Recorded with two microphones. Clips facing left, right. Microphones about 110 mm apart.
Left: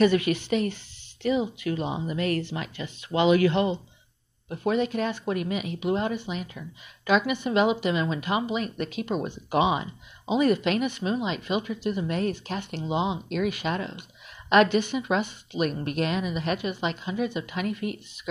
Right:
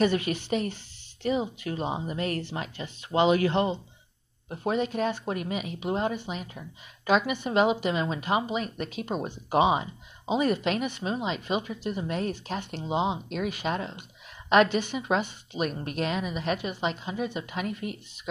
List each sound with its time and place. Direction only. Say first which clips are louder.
0.0 s speech: left 4 dB; 40° right (ahead or behind)
15.8 s speech: left 3 dB; 50° left (ahead or behind)
16.1 s speech: left 1 dB; 35° right (ahead or behind)